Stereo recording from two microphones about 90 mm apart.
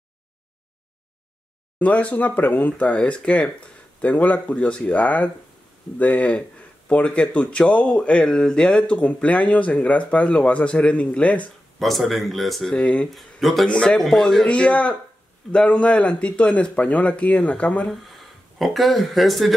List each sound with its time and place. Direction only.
1.8 s speech: 15° left (ahead or behind)
11.8 s speech: centre (ahead or behind)
12.7 s speech: 10° left (ahead or behind)
13.1 s speech: centre (ahead or behind)
18.0 s speech: centre (ahead or behind)